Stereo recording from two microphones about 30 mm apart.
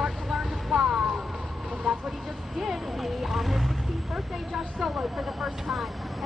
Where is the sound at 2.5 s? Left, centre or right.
Centre.